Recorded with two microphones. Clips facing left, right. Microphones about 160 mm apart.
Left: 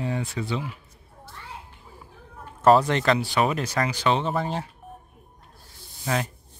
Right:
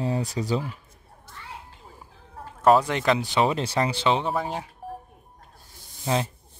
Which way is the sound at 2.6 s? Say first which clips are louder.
Left 1 dB; 10° right (ahead or behind).